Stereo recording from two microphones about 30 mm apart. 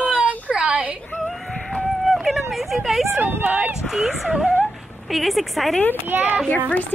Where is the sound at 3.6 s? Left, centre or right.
Right.